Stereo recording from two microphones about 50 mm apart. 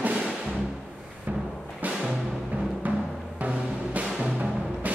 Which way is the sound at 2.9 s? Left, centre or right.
Right.